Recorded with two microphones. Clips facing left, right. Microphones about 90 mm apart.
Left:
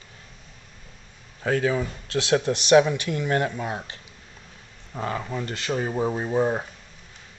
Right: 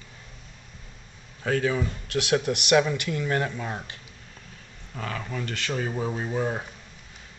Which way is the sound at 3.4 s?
10° left (ahead or behind).